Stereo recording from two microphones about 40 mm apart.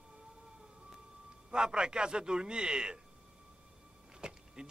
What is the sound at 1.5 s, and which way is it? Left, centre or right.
Speech, right.